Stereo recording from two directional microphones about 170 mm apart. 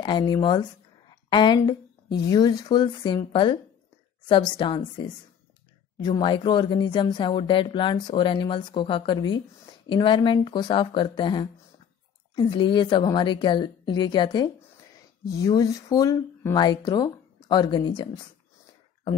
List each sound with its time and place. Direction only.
0.0 s speech: 25° left (ahead or behind)